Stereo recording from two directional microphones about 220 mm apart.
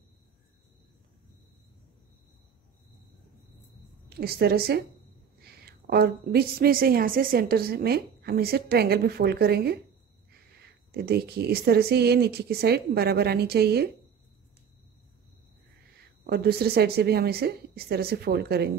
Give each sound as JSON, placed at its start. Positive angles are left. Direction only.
{"t": 4.2, "sound": "a woman's voice", "side_deg": -45}
{"t": 10.9, "sound": "a woman's voice", "side_deg": -45}
{"t": 16.3, "sound": "a woman's voice", "side_deg": -45}